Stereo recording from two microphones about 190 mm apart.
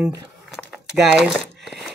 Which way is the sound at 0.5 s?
Centre (ahead or behind).